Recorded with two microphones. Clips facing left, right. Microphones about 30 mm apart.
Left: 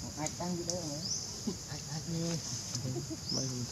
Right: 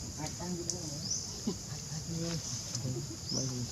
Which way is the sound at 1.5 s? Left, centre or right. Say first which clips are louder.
Right 2 dB; centre.